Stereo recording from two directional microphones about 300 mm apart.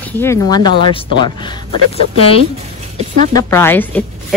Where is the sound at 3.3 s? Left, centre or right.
Centre.